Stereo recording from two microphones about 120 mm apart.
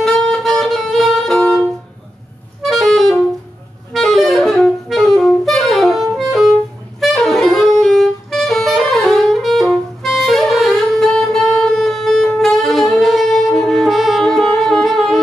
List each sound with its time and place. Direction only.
0.0 s music: 5° left (ahead or behind)
2.6 s music: centre (ahead or behind)
3.9 s saxophone: centre (ahead or behind)
6.1 s music: centre (ahead or behind)
7.0 s saxophone: centre (ahead or behind)